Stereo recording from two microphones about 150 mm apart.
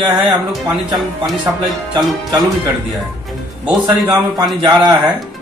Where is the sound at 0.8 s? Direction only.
25° right (ahead or behind).